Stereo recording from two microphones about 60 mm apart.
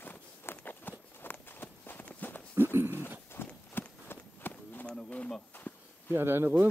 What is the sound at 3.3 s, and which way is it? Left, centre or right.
Horse, left.